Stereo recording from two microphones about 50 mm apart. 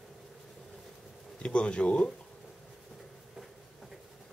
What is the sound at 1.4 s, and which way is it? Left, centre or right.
Speech, left.